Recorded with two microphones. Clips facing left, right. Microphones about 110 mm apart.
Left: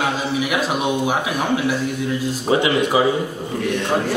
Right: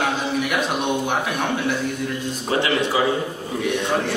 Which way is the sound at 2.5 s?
15° left (ahead or behind).